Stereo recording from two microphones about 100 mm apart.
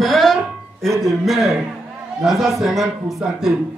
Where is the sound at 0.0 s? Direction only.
Centre (ahead or behind).